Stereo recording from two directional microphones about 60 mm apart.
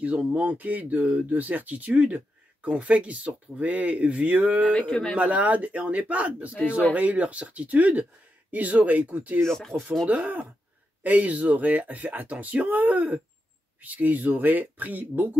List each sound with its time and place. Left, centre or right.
0.3 s speech: right
4.7 s speech: centre
5.1 s speech: right
9.5 s speech: centre
10.0 s speech: right